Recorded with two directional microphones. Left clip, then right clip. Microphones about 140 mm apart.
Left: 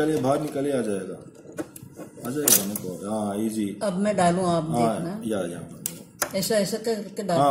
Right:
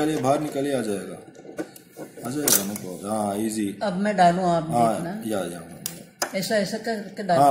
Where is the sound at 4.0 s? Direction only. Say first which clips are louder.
Right 4 dB; 75° left (ahead or behind).